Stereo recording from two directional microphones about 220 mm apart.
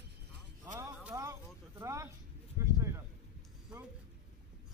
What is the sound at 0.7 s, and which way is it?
Music, 15° right (ahead or behind).